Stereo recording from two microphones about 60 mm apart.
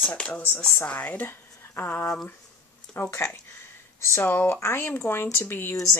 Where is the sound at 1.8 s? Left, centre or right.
Left.